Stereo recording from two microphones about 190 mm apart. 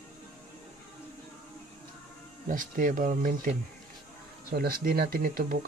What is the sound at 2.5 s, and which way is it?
Speech, 45° right (ahead or behind).